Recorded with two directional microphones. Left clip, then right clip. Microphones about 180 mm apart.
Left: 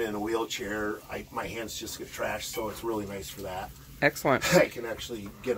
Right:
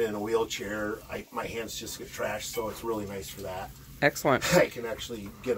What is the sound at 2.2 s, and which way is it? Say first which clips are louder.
Speech: even; 5° left (ahead or behind).